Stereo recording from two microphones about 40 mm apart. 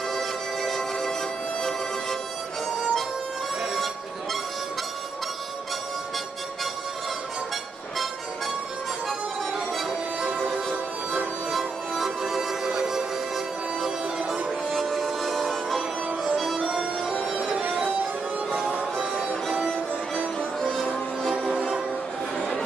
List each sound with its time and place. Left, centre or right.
0.1 s music: centre
2.8 s harmonica: centre
3.7 s music: centre
11.5 s music: centre
14.7 s music: centre
17.3 s music: right
20.6 s music: centre